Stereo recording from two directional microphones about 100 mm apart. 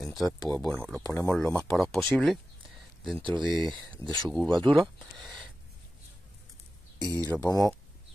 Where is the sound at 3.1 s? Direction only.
55° right (ahead or behind).